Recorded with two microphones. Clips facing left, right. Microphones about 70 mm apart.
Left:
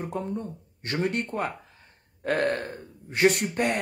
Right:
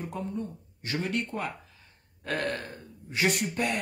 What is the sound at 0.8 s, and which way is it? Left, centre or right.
Speech, left.